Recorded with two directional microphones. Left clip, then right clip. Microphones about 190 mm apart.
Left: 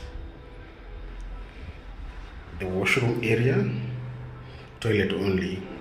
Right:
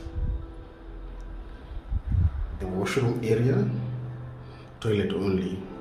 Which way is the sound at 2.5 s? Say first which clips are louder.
Left 4 dB; centre (ahead or behind).